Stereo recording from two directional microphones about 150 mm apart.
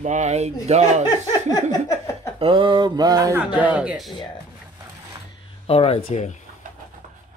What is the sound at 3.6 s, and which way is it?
Speech, 10° right (ahead or behind).